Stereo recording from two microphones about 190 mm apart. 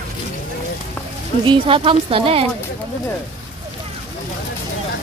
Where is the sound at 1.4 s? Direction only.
30° right (ahead or behind).